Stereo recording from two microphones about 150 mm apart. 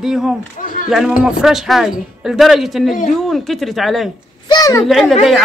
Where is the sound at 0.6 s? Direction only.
65° left (ahead or behind).